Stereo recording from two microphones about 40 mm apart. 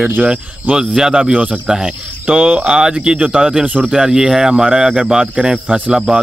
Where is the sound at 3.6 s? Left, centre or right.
Right.